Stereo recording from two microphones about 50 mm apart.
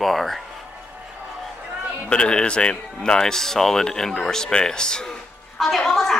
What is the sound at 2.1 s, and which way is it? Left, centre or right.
Speech, centre.